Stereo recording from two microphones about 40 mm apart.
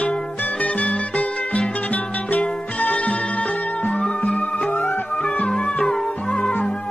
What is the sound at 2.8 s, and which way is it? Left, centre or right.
Music, left.